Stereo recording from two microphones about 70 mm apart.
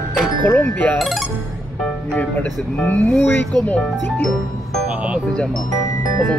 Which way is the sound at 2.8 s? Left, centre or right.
Left.